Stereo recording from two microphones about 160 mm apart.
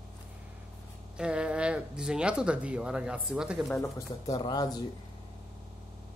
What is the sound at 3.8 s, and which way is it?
Speech, 25° left (ahead or behind).